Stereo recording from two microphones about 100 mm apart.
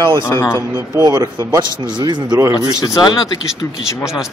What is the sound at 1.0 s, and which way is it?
A man's voice, 40° right (ahead or behind).